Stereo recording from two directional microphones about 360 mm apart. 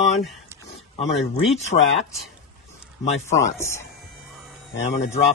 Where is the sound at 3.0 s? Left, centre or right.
Centre.